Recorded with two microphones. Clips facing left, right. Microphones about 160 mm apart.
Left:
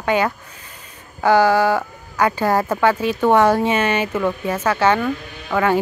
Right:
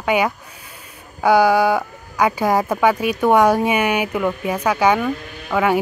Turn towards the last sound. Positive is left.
turn(degrees=-10)  # may be behind; listen again after turning